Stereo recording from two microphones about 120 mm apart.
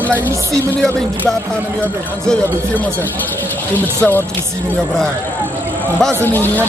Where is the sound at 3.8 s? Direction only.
15° left (ahead or behind).